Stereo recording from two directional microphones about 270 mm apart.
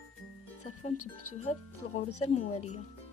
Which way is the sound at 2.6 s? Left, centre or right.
Left.